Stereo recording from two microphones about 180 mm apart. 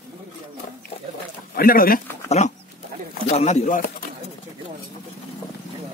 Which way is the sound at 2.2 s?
35° left (ahead or behind).